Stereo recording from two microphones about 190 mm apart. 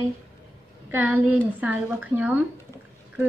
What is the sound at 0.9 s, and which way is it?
A woman's voice, 10° right (ahead or behind).